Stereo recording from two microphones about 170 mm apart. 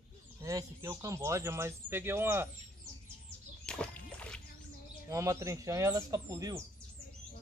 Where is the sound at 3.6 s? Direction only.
5° left (ahead or behind).